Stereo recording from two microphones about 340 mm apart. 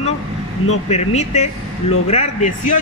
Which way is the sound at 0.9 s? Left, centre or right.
Centre.